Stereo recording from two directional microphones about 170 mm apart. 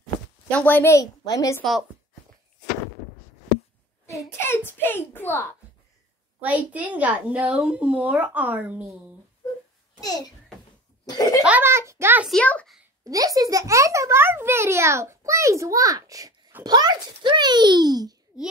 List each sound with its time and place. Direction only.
0.5 s a child's voice: 10° left (ahead or behind)
1.6 s a child's voice: centre (ahead or behind)
4.0 s a child's voice: 15° left (ahead or behind)
6.4 s a child's voice: 10° right (ahead or behind)
9.9 s a child's voice: 20° left (ahead or behind)
11.1 s a sound: 20° left (ahead or behind)
11.4 s a child's voice: 10° right (ahead or behind)
12.3 s a child's voice: 5° left (ahead or behind)
13.0 s a child's voice: 20° right (ahead or behind)
18.3 s a child's voice: 5° right (ahead or behind)